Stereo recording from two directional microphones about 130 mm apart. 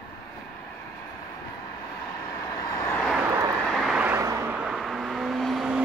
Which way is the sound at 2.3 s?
20° left (ahead or behind).